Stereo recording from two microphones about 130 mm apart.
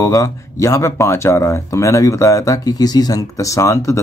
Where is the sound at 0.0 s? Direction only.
25° left (ahead or behind).